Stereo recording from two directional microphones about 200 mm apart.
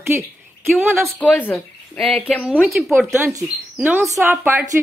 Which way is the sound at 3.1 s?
10° right (ahead or behind).